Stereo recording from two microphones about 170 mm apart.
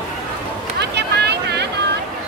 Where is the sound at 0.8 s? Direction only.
80° right.